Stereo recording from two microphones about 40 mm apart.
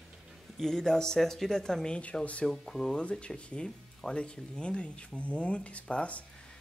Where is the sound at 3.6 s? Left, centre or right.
Left.